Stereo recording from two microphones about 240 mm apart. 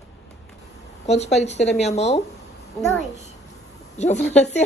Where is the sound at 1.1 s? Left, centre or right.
Left.